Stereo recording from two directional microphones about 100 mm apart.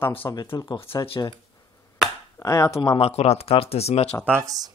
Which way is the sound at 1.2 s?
35° left (ahead or behind).